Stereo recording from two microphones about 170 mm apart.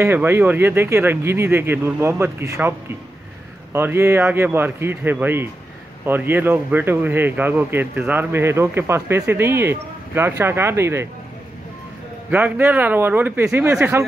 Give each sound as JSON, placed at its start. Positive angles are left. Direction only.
{"t": 0.0, "sound": "speech", "side_deg": -15}
{"t": 3.7, "sound": "speech", "side_deg": -15}
{"t": 12.3, "sound": "speech", "side_deg": -10}